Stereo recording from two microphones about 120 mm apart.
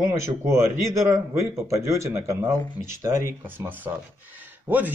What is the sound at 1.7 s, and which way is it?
A man's voice, 20° right (ahead or behind).